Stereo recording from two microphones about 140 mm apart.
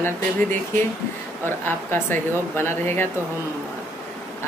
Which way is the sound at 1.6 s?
15° left (ahead or behind).